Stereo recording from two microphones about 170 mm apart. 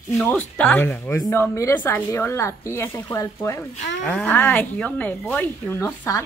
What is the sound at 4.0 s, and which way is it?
Speech, 5° left (ahead or behind).